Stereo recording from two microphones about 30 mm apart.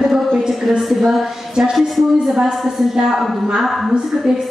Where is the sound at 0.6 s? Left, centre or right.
Centre.